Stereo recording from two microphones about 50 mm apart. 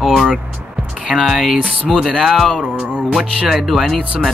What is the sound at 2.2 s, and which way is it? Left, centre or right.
Speech, centre.